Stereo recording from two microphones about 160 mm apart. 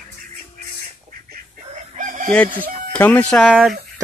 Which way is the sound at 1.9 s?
55° right (ahead or behind).